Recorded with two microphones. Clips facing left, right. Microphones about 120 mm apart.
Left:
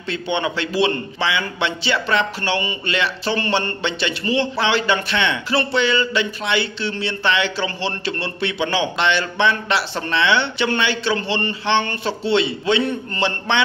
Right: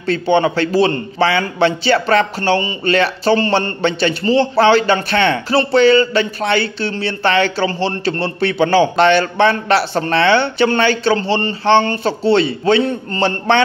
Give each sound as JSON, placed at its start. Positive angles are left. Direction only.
{"t": 0.0, "sound": "a man's voice", "side_deg": -40}